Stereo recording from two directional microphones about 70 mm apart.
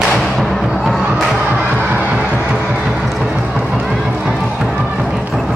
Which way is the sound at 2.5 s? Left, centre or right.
Centre.